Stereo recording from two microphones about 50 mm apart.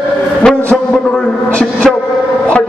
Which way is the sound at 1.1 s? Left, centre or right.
Centre.